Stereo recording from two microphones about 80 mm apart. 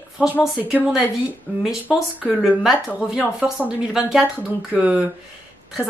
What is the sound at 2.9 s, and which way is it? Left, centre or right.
Speech, centre.